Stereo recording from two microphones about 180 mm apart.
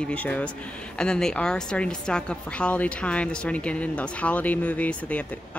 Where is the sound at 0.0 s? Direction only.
5° left (ahead or behind).